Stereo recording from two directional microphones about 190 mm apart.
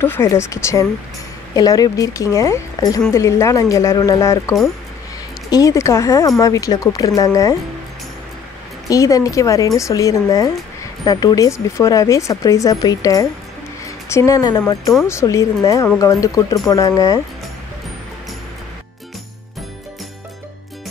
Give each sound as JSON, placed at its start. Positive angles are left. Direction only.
{"t": 0.0, "sound": "speech", "side_deg": 10}
{"t": 8.8, "sound": "a woman's voice", "side_deg": 15}